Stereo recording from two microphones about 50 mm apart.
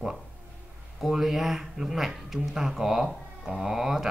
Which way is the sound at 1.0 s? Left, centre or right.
Centre.